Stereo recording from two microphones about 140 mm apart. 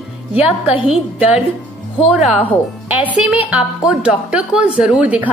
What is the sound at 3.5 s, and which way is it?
Speech, 10° right (ahead or behind).